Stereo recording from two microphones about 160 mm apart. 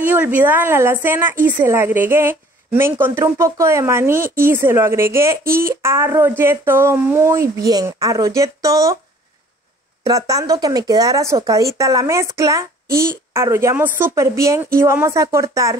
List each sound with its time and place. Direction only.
0.0 s a woman's voice: 10° right (ahead or behind)
10.0 s speech: 20° right (ahead or behind)